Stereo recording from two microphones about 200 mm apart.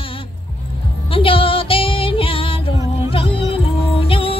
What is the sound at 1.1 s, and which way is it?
Music, 25° left (ahead or behind).